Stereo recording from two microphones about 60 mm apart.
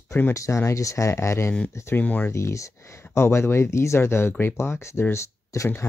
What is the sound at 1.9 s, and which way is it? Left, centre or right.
Speech, left.